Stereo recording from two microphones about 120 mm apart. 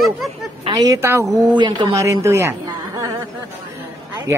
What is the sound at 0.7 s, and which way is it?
Speech, 30° right (ahead or behind).